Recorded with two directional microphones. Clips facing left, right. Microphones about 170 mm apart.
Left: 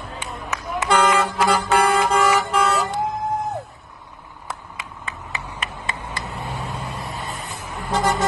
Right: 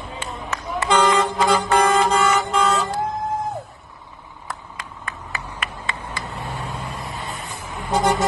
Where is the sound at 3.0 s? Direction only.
Centre (ahead or behind).